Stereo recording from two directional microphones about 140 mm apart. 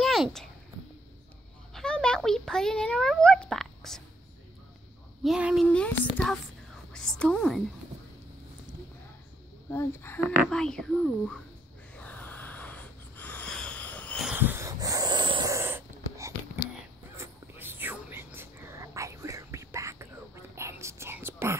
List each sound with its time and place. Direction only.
0.0 s a sound: centre (ahead or behind)
1.7 s a child's voice: 5° left (ahead or behind)
5.2 s speech: 5° right (ahead or behind)
5.7 s a woman's voice: 10° left (ahead or behind)
9.7 s speech: 15° left (ahead or behind)
10.5 s speech: 5° left (ahead or behind)
12.0 s a sound: 10° left (ahead or behind)
14.2 s wheeze: 10° right (ahead or behind)
14.7 s dog: 25° right (ahead or behind)
15.4 s wheeze: 20° right (ahead or behind)
17.2 s whispering: 15° right (ahead or behind)